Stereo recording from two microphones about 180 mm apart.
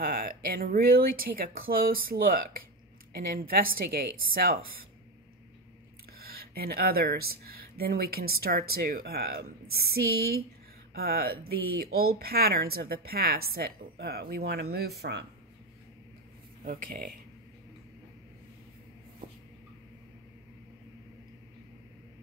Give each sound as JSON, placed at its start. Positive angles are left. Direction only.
{"t": 0.0, "sound": "speech", "side_deg": -55}
{"t": 6.1, "sound": "speech", "side_deg": -55}
{"t": 16.6, "sound": "speech", "side_deg": -50}